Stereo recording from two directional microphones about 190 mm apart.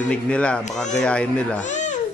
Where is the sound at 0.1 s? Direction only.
5° left (ahead or behind).